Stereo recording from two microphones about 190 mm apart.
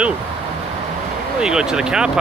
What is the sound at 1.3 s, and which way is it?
Speech, 5° right (ahead or behind).